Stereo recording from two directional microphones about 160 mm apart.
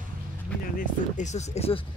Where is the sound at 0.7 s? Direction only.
45° left (ahead or behind).